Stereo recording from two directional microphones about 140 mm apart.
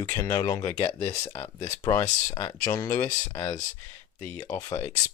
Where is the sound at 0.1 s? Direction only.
30° left (ahead or behind).